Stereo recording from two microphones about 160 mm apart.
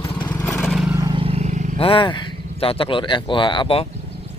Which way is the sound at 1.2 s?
40° right (ahead or behind).